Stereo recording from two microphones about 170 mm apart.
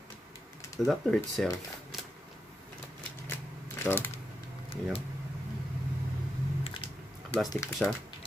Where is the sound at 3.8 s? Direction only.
15° left (ahead or behind).